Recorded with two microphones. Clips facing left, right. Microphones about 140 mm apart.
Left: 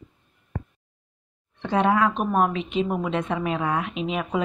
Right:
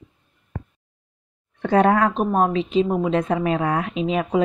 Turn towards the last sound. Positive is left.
turn(degrees=-35)  # may be behind; listen again after turning